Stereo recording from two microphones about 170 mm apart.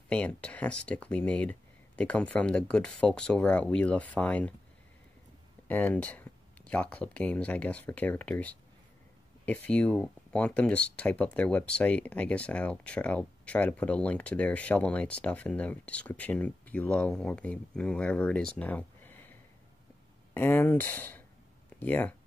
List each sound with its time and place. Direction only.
0.1 s speech: 5° left (ahead or behind)
5.7 s speech: 10° left (ahead or behind)
18.6 s a sound: 10° left (ahead or behind)
20.3 s speech: 10° left (ahead or behind)